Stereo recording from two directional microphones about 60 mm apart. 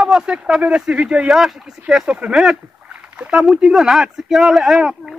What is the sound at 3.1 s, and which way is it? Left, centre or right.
Speech, right.